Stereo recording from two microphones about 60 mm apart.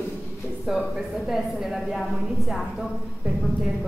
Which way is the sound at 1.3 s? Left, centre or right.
Centre.